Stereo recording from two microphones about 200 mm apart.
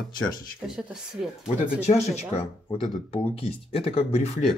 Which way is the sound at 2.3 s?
30° left (ahead or behind).